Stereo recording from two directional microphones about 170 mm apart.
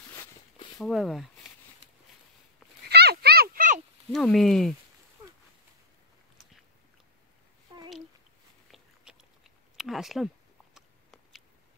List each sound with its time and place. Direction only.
0.7 s speech: centre (ahead or behind)
2.9 s a sound: 70° right (ahead or behind); by 3.8 s 50° right (ahead or behind)
4.1 s speech: centre (ahead or behind)
8.7 s chewing: centre (ahead or behind)